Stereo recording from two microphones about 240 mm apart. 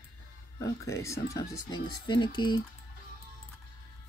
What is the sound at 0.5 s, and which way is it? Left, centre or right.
Speech, centre.